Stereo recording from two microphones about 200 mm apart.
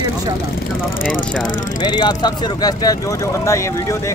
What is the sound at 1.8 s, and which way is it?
Speech, 20° left (ahead or behind).